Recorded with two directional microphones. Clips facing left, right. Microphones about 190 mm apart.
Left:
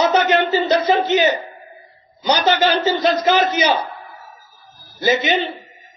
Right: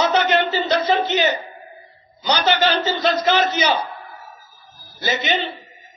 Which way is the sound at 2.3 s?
40° left (ahead or behind).